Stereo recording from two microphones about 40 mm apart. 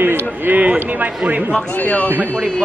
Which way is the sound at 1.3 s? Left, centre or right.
Right.